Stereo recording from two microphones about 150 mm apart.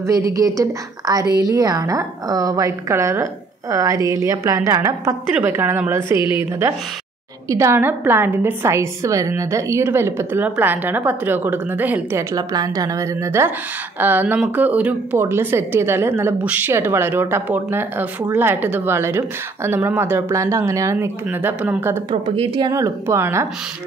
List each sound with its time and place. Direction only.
0.3 s a woman's voice: 25° right (ahead or behind)
6.1 s a woman's voice: 35° left (ahead or behind)
7.4 s a woman's voice: 20° right (ahead or behind)
22.1 s speech: 40° right (ahead or behind)
22.7 s a woman's voice: 20° right (ahead or behind)